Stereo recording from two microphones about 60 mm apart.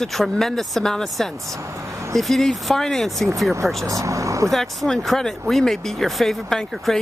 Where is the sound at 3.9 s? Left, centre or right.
Right.